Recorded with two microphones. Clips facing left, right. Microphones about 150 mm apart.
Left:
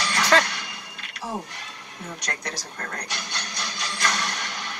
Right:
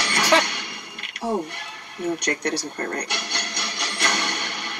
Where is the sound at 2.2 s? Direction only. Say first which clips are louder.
Right 9 dB; 65° right (ahead or behind).